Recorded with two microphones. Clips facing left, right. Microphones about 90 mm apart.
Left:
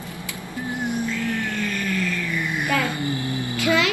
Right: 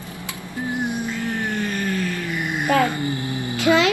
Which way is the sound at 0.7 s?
20° right (ahead or behind).